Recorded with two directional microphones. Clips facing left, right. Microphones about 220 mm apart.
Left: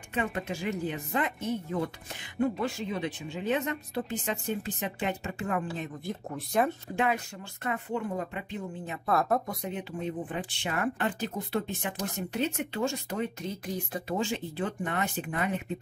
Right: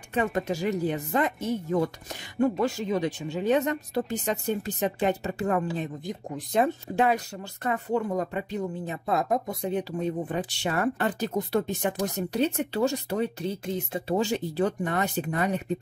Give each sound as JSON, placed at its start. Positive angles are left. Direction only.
{"t": 0.1, "sound": "speech", "side_deg": -40}
{"t": 6.0, "sound": "speech", "side_deg": -15}
{"t": 7.0, "sound": "speech", "side_deg": -35}
{"t": 9.0, "sound": "speech", "side_deg": -20}
{"t": 14.1, "sound": "speech", "side_deg": -40}